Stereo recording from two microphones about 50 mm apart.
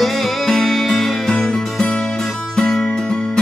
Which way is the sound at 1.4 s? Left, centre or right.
Centre.